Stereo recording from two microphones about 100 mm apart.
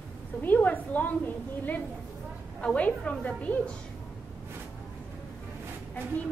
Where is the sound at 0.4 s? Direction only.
20° left (ahead or behind).